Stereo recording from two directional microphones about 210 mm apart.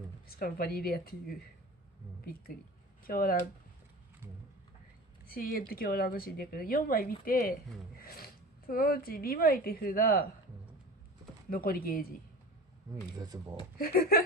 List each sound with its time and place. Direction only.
0.3 s speech: 45° left (ahead or behind)
3.1 s speech: 45° left (ahead or behind)
5.3 s speech: 45° left (ahead or behind)
11.5 s speech: 45° left (ahead or behind)
13.3 s speech: 10° right (ahead or behind)
13.7 s speech: 45° left (ahead or behind)